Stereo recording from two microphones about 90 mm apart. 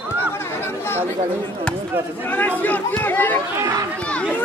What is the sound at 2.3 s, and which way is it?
Speech, 20° left (ahead or behind).